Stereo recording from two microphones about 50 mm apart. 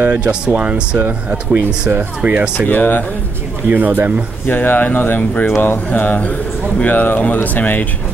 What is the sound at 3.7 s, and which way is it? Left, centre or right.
Speech, right.